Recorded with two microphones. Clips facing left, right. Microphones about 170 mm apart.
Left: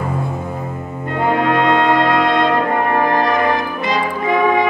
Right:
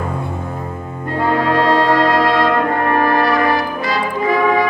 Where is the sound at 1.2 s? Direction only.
20° left (ahead or behind).